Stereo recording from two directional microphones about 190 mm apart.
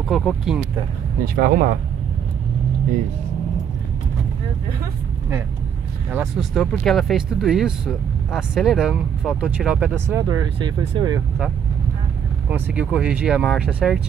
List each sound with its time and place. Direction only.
0.1 s speech: centre (ahead or behind)
1.2 s speech: 50° right (ahead or behind)
6.1 s speech: centre (ahead or behind); by 11.2 s 25° right (ahead or behind)
12.4 s speech: 10° right (ahead or behind)